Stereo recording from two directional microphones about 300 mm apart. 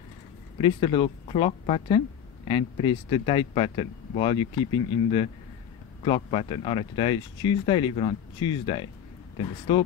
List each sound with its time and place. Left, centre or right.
0.6 s speech: centre